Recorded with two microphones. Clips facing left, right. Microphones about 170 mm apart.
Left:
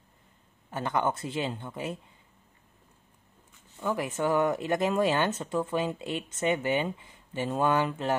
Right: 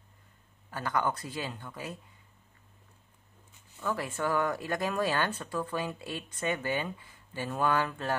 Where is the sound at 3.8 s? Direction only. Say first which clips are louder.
Left 4 dB; 20° left (ahead or behind).